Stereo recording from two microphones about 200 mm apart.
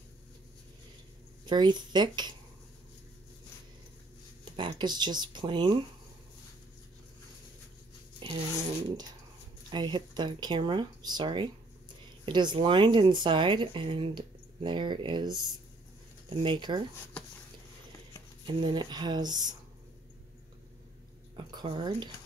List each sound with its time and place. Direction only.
1.4 s speech: 20° right (ahead or behind)
4.6 s speech: 25° right (ahead or behind)
9.7 s speech: 20° right (ahead or behind)
18.6 s speech: 25° right (ahead or behind)
21.4 s speech: 25° right (ahead or behind)